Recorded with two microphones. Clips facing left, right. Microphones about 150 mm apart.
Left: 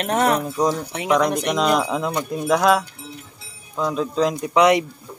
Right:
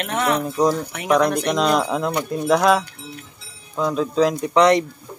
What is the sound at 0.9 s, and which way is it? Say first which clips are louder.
Speech: right 1 dB; 20° left (ahead or behind).